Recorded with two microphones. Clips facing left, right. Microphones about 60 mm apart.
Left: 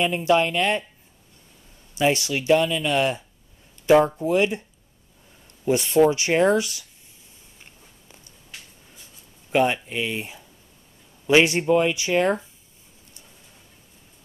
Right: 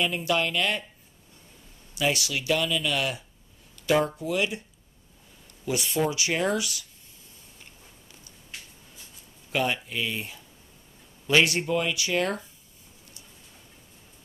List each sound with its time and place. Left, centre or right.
0.0 s speech: left
2.0 s speech: left
5.7 s speech: left
9.5 s speech: left